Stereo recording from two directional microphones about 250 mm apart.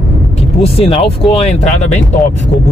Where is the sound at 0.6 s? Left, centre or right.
Left.